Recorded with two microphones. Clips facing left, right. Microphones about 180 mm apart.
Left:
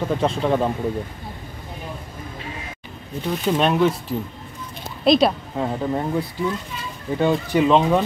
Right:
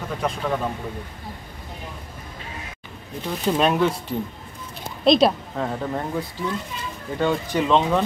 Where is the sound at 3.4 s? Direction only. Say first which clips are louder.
Left 1 dB; centre (ahead or behind).